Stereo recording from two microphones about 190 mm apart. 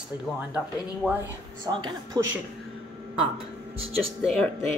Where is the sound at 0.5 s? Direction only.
5° right (ahead or behind).